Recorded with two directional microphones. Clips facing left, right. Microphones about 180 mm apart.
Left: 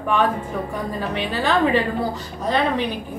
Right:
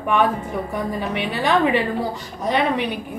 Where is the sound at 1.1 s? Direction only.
15° right (ahead or behind).